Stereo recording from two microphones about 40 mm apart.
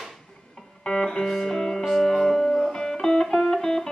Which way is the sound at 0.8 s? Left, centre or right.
Centre.